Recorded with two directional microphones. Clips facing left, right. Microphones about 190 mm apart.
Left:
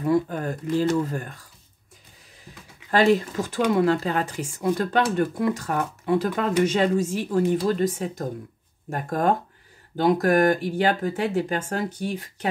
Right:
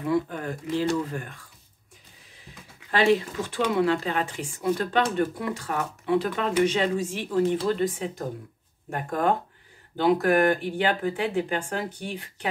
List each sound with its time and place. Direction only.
0.0 s speech: 40° left (ahead or behind)